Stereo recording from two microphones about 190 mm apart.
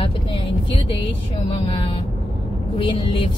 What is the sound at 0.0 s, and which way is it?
Vehicle, 30° left (ahead or behind).